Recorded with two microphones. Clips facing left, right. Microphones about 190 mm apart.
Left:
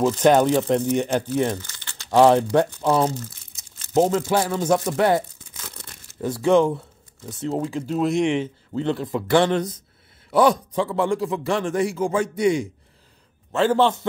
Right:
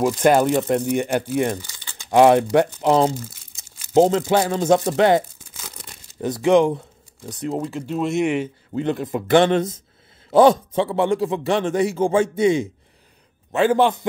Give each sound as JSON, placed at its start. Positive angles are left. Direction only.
{"t": 0.0, "sound": "speech", "side_deg": -10}
{"t": 3.9, "sound": "a man's voice", "side_deg": -25}
{"t": 5.6, "sound": "crumpling", "side_deg": -10}
{"t": 7.6, "sound": "a man's voice", "side_deg": 0}